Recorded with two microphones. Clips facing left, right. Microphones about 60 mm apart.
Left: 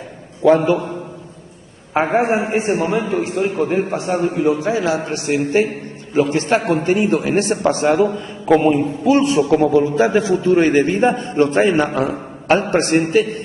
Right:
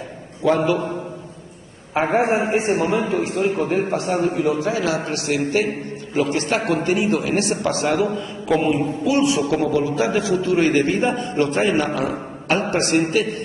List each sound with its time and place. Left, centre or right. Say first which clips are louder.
0.5 s a man's voice: left 5 dB; left
2.1 s a man's voice: even; left